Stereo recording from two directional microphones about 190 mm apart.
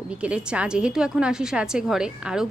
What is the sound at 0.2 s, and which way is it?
A woman's voice, 5° right (ahead or behind).